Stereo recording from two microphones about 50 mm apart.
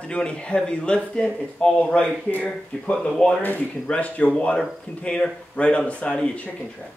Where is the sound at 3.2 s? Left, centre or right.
Centre.